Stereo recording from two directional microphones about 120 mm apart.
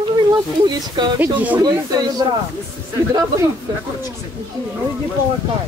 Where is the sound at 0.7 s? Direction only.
35° right (ahead or behind).